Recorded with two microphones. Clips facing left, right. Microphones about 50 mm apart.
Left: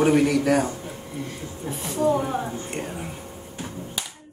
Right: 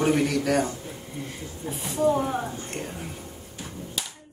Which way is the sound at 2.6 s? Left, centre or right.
Centre.